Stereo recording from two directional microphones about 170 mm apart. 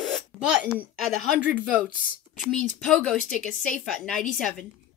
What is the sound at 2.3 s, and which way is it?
A woman's voice, 5° left (ahead or behind).